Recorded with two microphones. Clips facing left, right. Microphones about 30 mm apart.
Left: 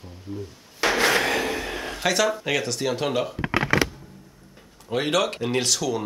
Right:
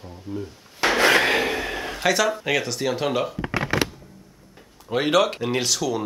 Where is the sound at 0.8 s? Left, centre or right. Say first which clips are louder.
Right 3 dB; right.